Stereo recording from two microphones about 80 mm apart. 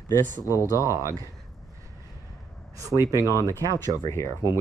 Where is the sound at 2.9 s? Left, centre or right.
Right.